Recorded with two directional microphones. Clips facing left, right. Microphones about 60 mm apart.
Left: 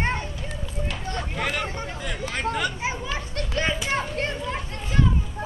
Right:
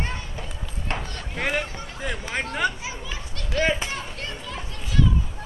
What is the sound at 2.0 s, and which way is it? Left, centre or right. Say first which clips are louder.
Speech: right 5 dB; centre.